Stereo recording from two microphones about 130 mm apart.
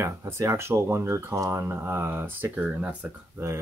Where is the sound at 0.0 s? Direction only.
20° right (ahead or behind).